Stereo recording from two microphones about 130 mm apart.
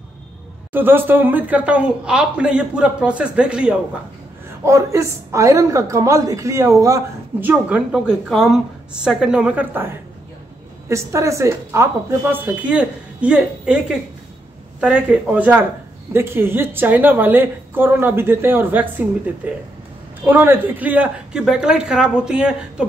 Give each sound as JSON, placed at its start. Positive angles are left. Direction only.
{"t": 0.7, "sound": "a woman's voice", "side_deg": -15}
{"t": 4.6, "sound": "a woman's voice", "side_deg": -25}
{"t": 7.3, "sound": "a woman's voice", "side_deg": -15}
{"t": 7.9, "sound": "a woman's voice", "side_deg": -5}